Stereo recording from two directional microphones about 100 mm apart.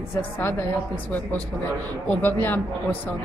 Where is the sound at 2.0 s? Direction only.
20° left (ahead or behind).